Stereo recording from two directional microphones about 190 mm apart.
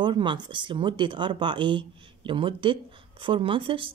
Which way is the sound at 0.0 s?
25° right (ahead or behind).